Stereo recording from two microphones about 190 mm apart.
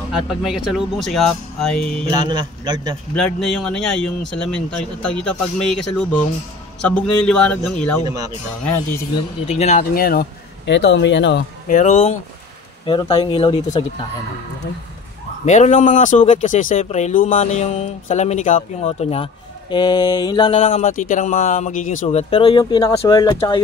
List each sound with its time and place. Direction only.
0.1 s speech: centre (ahead or behind)
2.1 s a man's voice: 20° right (ahead or behind)
3.2 s speech: centre (ahead or behind)
8.0 s a man's voice: 20° right (ahead or behind)
8.6 s speech: 10° left (ahead or behind)
9.5 s speech: 35° left (ahead or behind); by 10.2 s 55° left (ahead or behind)
10.7 s speech: 65° left (ahead or behind)
11.6 s speech: 40° left (ahead or behind)
12.8 s speech: 25° left (ahead or behind)
15.4 s speech: 40° left (ahead or behind)
19.7 s speech: 25° left (ahead or behind)